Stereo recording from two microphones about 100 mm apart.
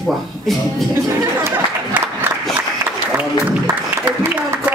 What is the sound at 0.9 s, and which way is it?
Speech, 25° right (ahead or behind).